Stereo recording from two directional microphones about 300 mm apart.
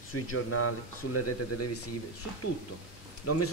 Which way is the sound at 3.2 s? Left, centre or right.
Left.